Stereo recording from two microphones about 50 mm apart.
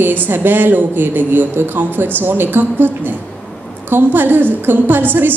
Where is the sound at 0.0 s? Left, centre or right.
Right.